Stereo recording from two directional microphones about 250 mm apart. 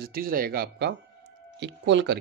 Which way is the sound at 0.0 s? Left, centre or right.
Right.